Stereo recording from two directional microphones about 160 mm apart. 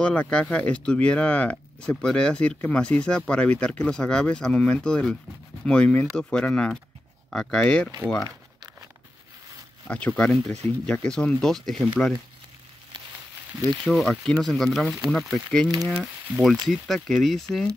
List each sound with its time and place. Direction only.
0.0 s speech: 10° left (ahead or behind)
9.8 s speech: 5° left (ahead or behind)
13.6 s speech: centre (ahead or behind)